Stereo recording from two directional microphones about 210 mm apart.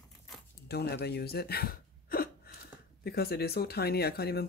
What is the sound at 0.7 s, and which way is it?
Speech, 50° left (ahead or behind).